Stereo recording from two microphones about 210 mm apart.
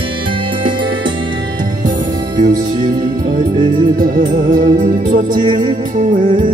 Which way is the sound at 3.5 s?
20° right (ahead or behind).